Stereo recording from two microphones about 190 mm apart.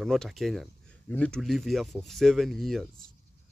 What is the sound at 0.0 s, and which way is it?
Speech, centre (ahead or behind).